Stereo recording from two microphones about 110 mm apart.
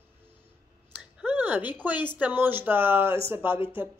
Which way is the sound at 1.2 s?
15° right (ahead or behind).